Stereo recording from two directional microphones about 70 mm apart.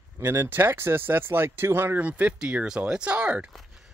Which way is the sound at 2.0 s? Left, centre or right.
Right.